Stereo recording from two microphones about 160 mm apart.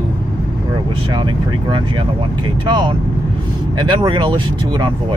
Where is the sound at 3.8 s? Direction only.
30° right (ahead or behind).